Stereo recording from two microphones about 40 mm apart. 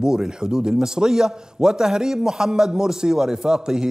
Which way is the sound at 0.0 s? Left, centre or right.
Centre.